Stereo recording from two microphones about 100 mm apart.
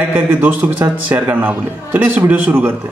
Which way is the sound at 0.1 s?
15° right (ahead or behind).